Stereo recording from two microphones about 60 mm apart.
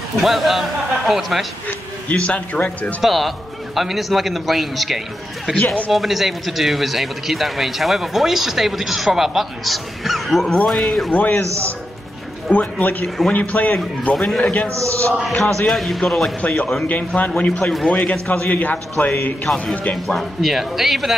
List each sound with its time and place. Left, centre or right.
0.2 s a man's voice: centre
1.7 s a man's voice: left
3.0 s a man's voice: centre
11.1 s a man's voice: left
11.4 s a man's voice: right
12.4 s a man's voice: left
14.7 s a man's voice: right
15.7 s a man's voice: centre
16.3 s a man's voice: left
20.2 s a man's voice: centre